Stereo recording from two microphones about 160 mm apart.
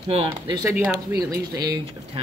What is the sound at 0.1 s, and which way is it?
Speech, 30° right (ahead or behind).